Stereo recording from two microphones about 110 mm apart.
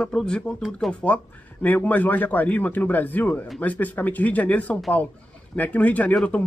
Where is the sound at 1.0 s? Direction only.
15° left (ahead or behind).